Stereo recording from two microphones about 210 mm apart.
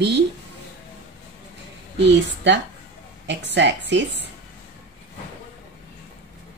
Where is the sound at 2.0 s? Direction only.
55° right (ahead or behind).